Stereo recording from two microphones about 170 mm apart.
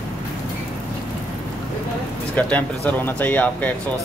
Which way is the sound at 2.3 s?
10° left (ahead or behind).